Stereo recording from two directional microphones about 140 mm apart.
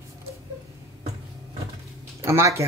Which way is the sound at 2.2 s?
20° right (ahead or behind).